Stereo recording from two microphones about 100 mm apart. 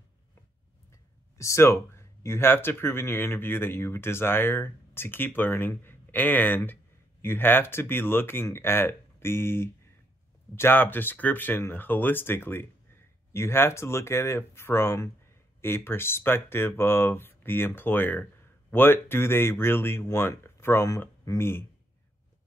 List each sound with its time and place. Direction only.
1.4 s speech: 30° left (ahead or behind)